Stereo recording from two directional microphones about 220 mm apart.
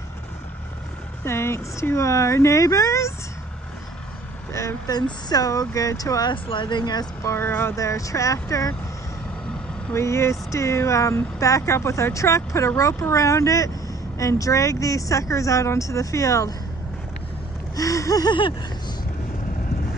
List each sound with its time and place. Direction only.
1.2 s speech: 10° left (ahead or behind)
4.5 s speech: 15° left (ahead or behind)
9.9 s speech: 10° left (ahead or behind)
17.7 s a sound: 15° left (ahead or behind)